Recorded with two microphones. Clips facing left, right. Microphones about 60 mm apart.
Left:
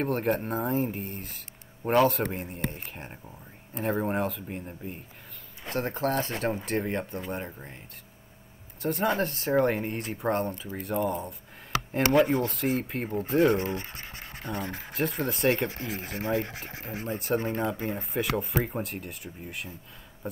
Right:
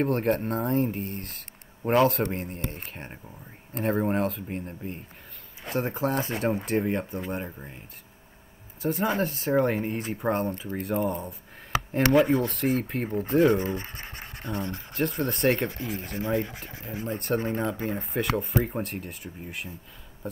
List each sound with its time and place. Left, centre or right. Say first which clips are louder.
0.0 s speech: right 2 dB; centre
8.8 s speech: right 1 dB; centre
13.7 s speech: right 1 dB; right
14.9 s speech: right 1 dB; centre
16.7 s speech: right 2 dB; left
17.1 s speech: right 1 dB; centre